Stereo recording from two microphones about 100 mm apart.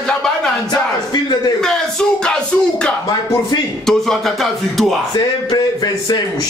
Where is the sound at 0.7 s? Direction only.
40° left (ahead or behind).